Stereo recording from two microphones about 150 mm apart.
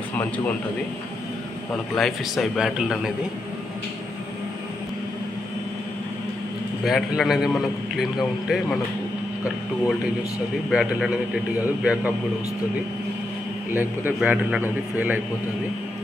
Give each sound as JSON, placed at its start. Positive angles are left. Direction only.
{"t": 2.0, "sound": "a man's voice", "side_deg": 0}
{"t": 6.8, "sound": "a man's voice", "side_deg": 0}
{"t": 10.7, "sound": "a man's voice", "side_deg": -5}
{"t": 13.7, "sound": "a man's voice", "side_deg": -15}